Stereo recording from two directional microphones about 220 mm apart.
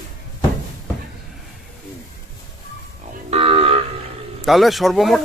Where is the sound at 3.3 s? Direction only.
25° right (ahead or behind).